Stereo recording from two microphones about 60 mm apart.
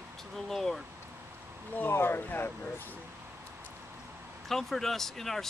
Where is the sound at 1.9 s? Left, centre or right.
Left.